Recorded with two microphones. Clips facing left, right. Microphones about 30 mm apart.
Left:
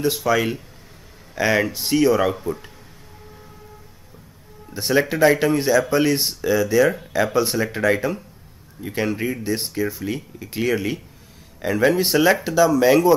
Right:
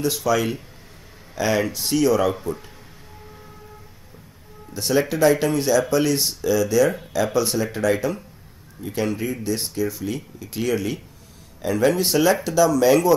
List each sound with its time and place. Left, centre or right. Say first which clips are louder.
0.0 s speech: left 1 dB; centre
4.7 s speech: left 1 dB; centre